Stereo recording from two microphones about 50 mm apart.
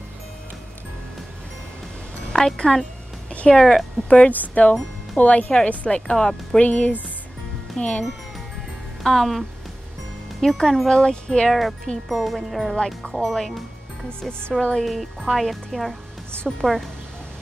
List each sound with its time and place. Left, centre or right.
2.3 s speech: centre
3.3 s music: left
3.5 s speech: centre
4.3 s speech: left
6.1 s speech: centre
6.6 s speech: left
9.0 s speech: centre
12.7 s speech: centre
13.1 s speech: centre
14.6 s speech: centre
14.9 s a woman's voice: centre